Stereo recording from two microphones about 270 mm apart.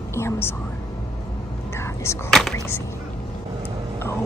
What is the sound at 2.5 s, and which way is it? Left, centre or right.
Speech, centre.